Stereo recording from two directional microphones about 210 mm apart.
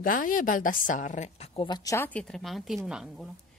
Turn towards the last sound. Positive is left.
turn(degrees=0)  # may be behind; listen again after turning